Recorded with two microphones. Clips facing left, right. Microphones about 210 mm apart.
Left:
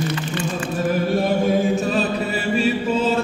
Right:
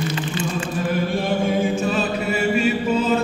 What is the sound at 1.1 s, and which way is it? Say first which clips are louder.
Chant: left 4 dB; 40° left (ahead or behind).